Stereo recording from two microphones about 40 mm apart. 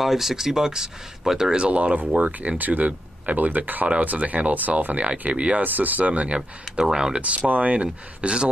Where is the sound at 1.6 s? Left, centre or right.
Right.